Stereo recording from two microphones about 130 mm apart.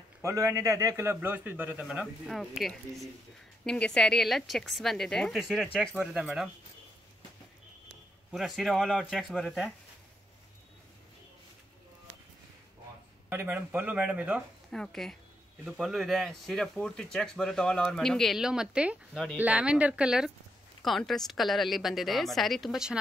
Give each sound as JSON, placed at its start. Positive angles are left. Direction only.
{"t": 0.2, "sound": "a man's voice", "side_deg": -25}
{"t": 8.3, "sound": "speech", "side_deg": 0}
{"t": 13.3, "sound": "a man's voice", "side_deg": -15}
{"t": 14.7, "sound": "a man's voice", "side_deg": 5}